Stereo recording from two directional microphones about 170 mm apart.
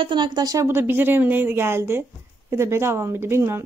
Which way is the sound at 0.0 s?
25° right (ahead or behind).